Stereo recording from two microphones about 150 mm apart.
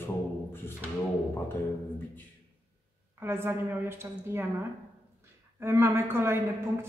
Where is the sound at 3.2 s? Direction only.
15° right (ahead or behind).